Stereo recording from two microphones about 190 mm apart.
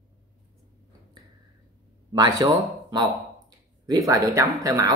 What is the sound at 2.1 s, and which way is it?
Speech, 20° right (ahead or behind).